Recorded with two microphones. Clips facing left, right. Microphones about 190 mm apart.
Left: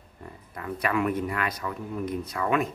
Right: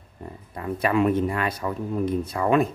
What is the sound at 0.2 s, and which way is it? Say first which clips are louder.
Speech: right 5 dB; 25° right (ahead or behind).